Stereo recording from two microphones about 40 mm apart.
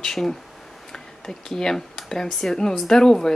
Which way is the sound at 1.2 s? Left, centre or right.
Centre.